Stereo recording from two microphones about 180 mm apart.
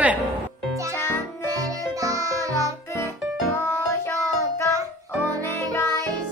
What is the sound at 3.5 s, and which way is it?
Music, 15° left (ahead or behind).